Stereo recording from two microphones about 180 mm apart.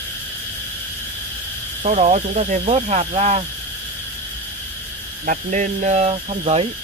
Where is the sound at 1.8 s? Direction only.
40° right (ahead or behind).